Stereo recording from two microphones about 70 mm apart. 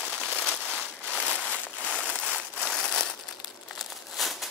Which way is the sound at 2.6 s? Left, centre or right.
Centre.